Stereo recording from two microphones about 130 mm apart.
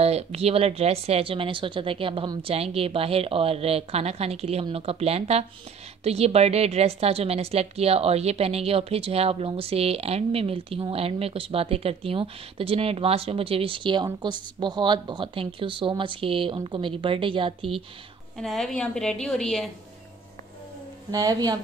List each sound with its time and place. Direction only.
0.0 s a woman's voice: 55° right (ahead or behind)
18.4 s a woman's voice: centre (ahead or behind)
21.1 s a woman's voice: 30° right (ahead or behind)